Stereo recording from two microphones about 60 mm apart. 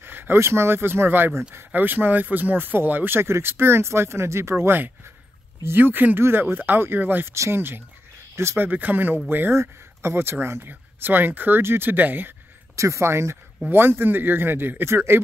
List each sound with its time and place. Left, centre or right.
0.0 s a sound: right
0.4 s speech: right
9.6 s speech: right
12.7 s speech: right
13.7 s speech: right